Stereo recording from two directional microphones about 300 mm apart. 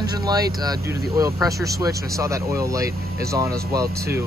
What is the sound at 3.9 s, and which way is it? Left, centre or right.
Speech, centre.